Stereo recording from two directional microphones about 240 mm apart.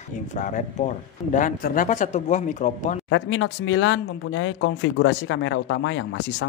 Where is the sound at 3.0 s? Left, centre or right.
Left.